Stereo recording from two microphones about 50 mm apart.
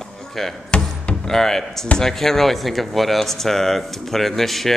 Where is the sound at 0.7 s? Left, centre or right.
Left.